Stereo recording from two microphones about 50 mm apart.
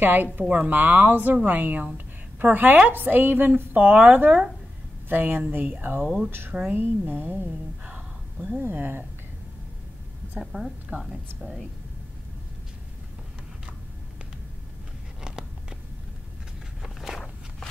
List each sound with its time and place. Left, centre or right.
0.0 s a woman's voice: right
7.8 s a sound: right
8.5 s speech: right
10.4 s a woman's voice: centre
16.8 s walk: centre